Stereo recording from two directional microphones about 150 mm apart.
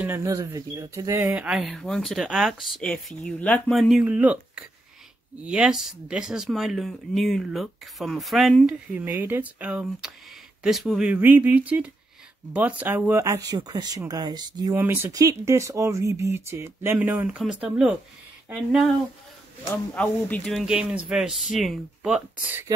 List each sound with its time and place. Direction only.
0.0 s speech: 15° right (ahead or behind)
1.3 s speech: 5° right (ahead or behind); by 3.7 s 10° left (ahead or behind)
3.7 s speech: centre (ahead or behind); by 14.8 s 25° right (ahead or behind)
14.8 s speech: 15° right (ahead or behind)
19.7 s speech: 10° left (ahead or behind)
20.6 s speech: 5° right (ahead or behind)